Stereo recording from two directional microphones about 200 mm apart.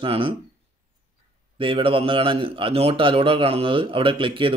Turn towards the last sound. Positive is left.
turn(degrees=-25)  # may be behind; listen again after turning